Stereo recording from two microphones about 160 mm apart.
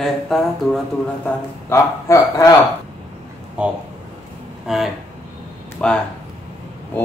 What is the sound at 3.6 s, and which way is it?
Speech, 5° right (ahead or behind).